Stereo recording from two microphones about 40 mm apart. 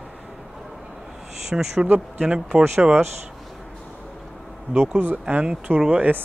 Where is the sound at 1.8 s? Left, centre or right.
Right.